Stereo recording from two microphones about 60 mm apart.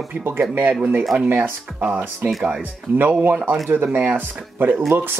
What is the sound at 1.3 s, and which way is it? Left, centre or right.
Speech, right.